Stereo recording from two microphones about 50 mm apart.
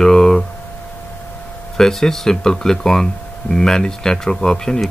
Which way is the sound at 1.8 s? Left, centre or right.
Centre.